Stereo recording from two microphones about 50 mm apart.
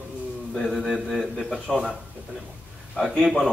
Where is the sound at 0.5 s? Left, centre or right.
Centre.